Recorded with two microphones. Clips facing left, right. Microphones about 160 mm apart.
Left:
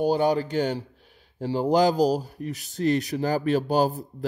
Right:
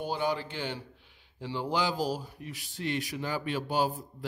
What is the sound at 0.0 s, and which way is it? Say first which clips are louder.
A man's voice: left 9 dB; 40° left (ahead or behind).